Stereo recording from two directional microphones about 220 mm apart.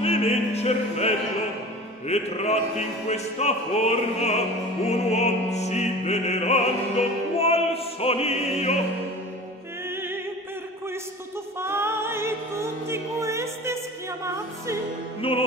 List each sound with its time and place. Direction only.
0.0 s opera: 30° left (ahead or behind)
9.8 s music: 10° right (ahead or behind)
11.6 s music: 10° right (ahead or behind)
15.2 s opera: 25° left (ahead or behind)